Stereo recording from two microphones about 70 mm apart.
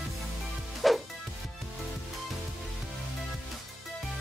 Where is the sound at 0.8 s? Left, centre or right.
Centre.